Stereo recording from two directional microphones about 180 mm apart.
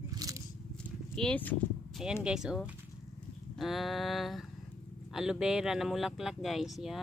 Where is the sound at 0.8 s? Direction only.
5° left (ahead or behind).